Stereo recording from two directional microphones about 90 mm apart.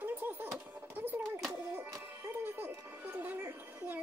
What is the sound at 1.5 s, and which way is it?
Music, 20° right (ahead or behind).